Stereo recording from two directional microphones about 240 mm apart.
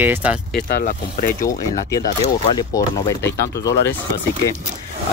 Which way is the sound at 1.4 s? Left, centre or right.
Centre.